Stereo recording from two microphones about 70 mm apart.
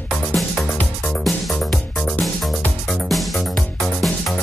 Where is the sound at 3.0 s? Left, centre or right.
Centre.